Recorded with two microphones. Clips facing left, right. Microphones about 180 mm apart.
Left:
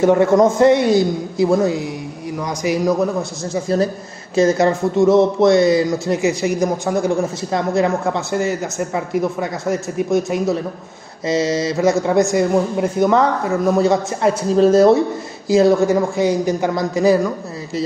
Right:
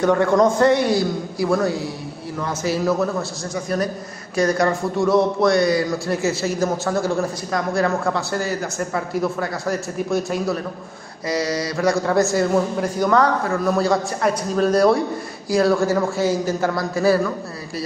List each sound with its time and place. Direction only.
0.0 s a man's voice: 20° left (ahead or behind)